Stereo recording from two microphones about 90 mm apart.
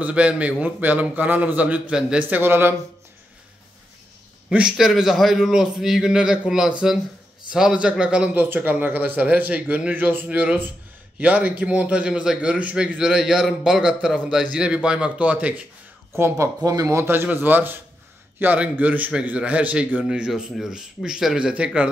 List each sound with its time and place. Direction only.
0.0 s a man's voice: 15° right (ahead or behind)
2.2 s speech: 25° right (ahead or behind)
4.5 s a man's voice: 10° right (ahead or behind)
16.1 s speech: 30° right (ahead or behind)
16.6 s a man's voice: 40° right (ahead or behind); by 21.8 s 10° right (ahead or behind)